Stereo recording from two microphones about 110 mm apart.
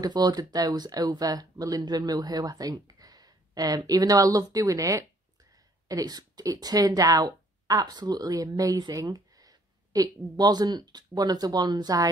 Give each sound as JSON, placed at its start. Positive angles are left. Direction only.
{"t": 0.0, "sound": "speech", "side_deg": -40}